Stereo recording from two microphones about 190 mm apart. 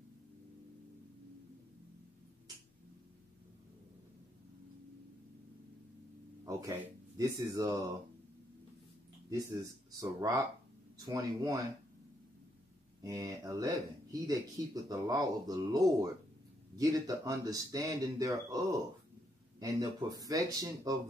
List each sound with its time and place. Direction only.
6.4 s speech: 20° right (ahead or behind)
9.3 s speech: 15° right (ahead or behind)
13.0 s speech: 20° right (ahead or behind)
19.6 s speech: 20° right (ahead or behind)